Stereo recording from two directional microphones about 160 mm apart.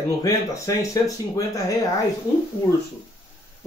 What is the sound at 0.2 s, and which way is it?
Speech, 20° left (ahead or behind).